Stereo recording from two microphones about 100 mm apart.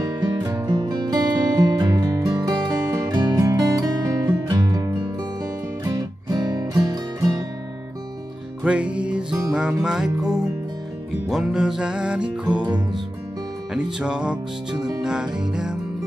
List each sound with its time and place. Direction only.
0.6 s music: 40° right (ahead or behind)
8.6 s music: 10° right (ahead or behind)
12.6 s music: 45° right (ahead or behind)
13.8 s music: 5° right (ahead or behind)